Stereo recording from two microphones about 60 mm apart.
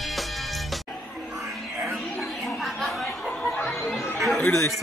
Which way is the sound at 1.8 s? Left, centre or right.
Centre.